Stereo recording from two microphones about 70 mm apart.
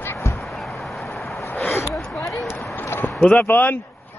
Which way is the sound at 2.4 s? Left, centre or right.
Left.